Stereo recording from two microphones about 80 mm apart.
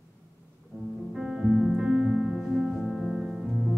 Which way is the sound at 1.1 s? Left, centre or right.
Centre.